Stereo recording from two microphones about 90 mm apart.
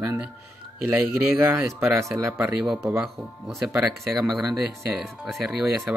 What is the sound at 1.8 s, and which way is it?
Speech, 25° right (ahead or behind).